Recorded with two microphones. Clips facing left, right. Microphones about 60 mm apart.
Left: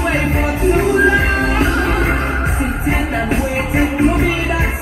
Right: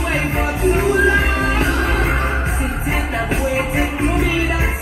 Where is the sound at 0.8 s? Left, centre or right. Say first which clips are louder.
Left 2 dB; left.